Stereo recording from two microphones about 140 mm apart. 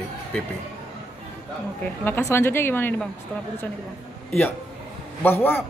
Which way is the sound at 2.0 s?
15° left (ahead or behind).